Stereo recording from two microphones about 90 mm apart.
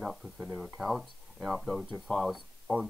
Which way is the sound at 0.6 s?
Centre (ahead or behind).